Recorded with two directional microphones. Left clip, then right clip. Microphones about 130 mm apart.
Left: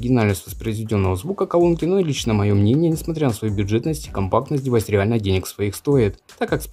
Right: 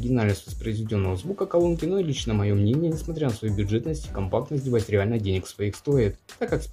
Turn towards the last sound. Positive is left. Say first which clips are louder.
# left 5 dB
turn(degrees=25)  # may be behind; listen again after turning